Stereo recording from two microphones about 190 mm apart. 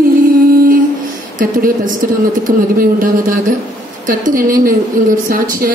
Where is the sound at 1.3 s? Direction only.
45° right (ahead or behind).